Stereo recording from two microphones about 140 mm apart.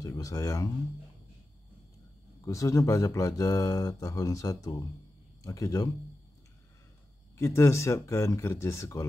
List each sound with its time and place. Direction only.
0.0 s speech: 25° left (ahead or behind)
2.4 s speech: 25° left (ahead or behind)
7.3 s speech: 20° left (ahead or behind)